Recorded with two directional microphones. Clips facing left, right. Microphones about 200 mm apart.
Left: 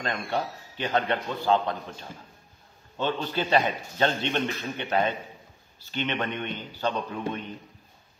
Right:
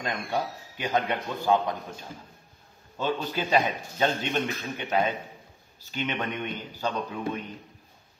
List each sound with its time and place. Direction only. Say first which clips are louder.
0.0 s a man's voice: even; 10° right (ahead or behind)